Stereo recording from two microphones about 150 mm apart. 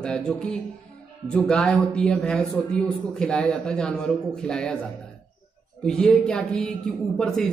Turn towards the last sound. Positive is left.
turn(degrees=5)  # may be behind; listen again after turning